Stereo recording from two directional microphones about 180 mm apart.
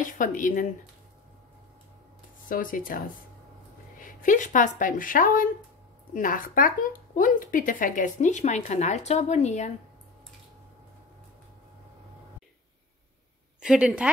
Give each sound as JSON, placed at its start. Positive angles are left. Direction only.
{"t": 0.0, "sound": "speech", "side_deg": 45}
{"t": 2.4, "sound": "speech", "side_deg": 50}
{"t": 4.0, "sound": "speech", "side_deg": 50}
{"t": 13.6, "sound": "a woman's voice", "side_deg": -5}